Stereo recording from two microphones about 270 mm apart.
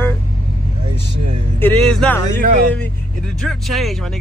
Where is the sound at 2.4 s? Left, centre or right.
Right.